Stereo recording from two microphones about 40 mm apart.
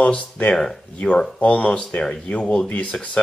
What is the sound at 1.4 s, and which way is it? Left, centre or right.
Speech, left.